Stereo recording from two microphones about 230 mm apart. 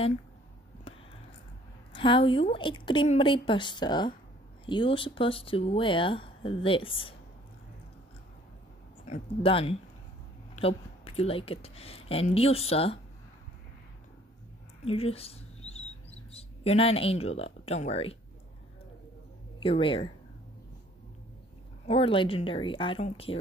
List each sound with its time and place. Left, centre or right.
2.0 s speech: left
9.0 s speech: left
14.9 s speech: left
19.6 s speech: left
21.8 s speech: left